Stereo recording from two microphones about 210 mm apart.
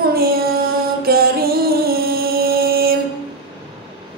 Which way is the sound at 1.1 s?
45° right (ahead or behind).